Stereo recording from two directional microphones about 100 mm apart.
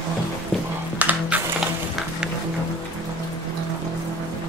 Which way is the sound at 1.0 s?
15° right (ahead or behind).